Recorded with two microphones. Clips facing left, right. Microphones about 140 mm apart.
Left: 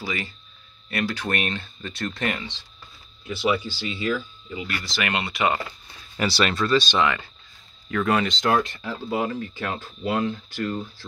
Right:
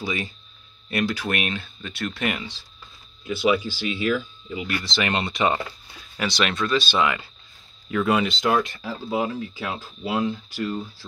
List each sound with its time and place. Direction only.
0.0 s speech: 20° right (ahead or behind)
6.1 s speech: centre (ahead or behind)
7.0 s speech: 15° right (ahead or behind)